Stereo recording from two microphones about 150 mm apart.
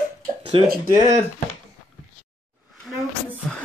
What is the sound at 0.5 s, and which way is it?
Speech, 35° right (ahead or behind).